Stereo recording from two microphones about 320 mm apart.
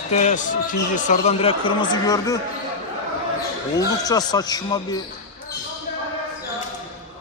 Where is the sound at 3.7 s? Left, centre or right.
Centre.